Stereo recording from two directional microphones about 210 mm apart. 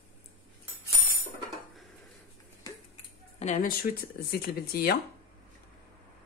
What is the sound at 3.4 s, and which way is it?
Speech, 35° left (ahead or behind).